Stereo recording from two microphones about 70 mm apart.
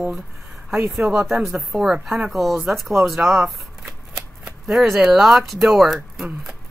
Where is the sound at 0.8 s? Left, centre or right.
Centre.